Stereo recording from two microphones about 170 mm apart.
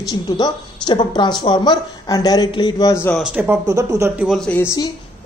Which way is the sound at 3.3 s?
10° right (ahead or behind).